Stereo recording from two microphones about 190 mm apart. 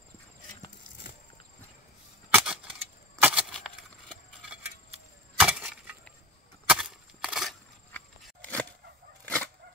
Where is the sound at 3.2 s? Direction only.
5° right (ahead or behind).